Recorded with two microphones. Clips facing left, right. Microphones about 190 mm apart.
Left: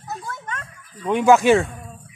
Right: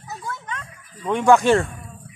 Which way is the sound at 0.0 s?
50° left (ahead or behind).